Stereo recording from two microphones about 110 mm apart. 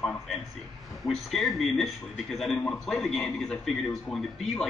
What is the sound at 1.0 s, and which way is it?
A man's voice, centre (ahead or behind).